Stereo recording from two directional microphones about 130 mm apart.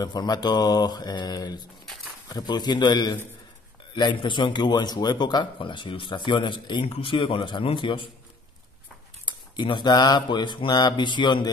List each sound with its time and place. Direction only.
0.0 s speech: 30° left (ahead or behind)
9.2 s speech: 35° left (ahead or behind)